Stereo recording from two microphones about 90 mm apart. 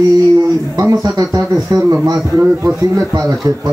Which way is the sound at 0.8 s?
40° right (ahead or behind).